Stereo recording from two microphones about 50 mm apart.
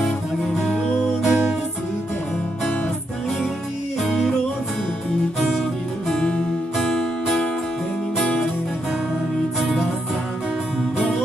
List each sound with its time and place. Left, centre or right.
1.2 s music: centre
4.0 s music: centre
6.0 s music: centre
9.6 s music: centre